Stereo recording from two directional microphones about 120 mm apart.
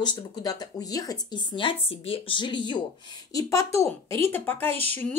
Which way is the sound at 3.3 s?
25° left (ahead or behind).